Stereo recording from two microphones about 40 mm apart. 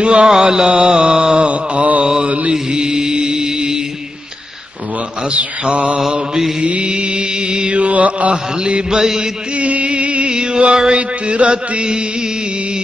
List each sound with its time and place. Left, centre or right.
0.0 s mantra: right
2.5 s music: centre
5.3 s mantra: right
6.1 s mantra: centre
6.6 s mantra: right
8.9 s mantra: centre
9.6 s chant: right
11.0 s mantra: right